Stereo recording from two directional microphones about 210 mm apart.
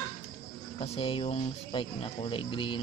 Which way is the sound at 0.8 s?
30° left (ahead or behind).